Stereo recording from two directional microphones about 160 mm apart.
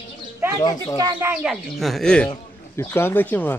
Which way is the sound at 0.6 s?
25° left (ahead or behind).